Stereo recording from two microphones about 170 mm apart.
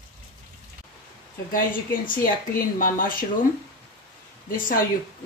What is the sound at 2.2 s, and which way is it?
Speech, 55° left (ahead or behind).